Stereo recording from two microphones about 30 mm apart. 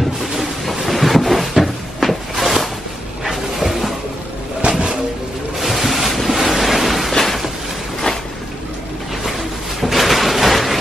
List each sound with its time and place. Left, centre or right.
0.7 s thunder: centre
1.6 s cupboard open or close: centre
3.3 s dog: centre
4.6 s vehicle: right
5.6 s waves: centre
9.8 s a sound: centre